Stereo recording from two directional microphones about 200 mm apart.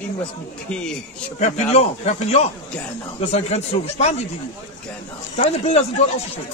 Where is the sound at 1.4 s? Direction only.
30° left (ahead or behind).